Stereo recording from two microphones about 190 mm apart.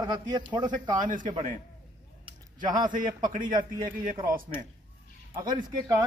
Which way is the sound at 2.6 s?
45° right (ahead or behind).